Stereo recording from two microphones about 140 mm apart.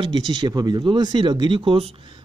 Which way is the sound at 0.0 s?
35° right (ahead or behind).